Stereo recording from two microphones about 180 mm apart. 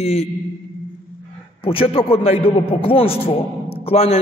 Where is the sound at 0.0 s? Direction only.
35° left (ahead or behind).